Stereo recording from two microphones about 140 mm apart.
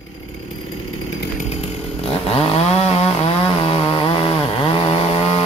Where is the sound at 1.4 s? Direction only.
50° left (ahead or behind).